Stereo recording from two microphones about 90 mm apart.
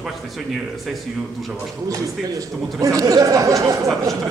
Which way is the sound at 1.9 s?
40° right (ahead or behind).